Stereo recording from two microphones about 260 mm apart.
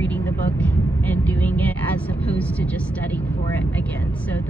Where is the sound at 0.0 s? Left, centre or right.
Centre.